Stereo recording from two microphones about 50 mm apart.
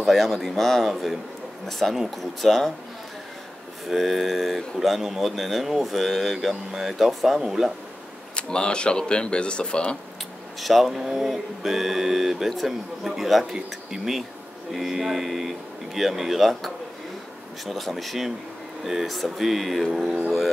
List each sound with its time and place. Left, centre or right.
0.0 s speech: centre
3.9 s speech: centre
8.4 s speech: centre
10.6 s speech: centre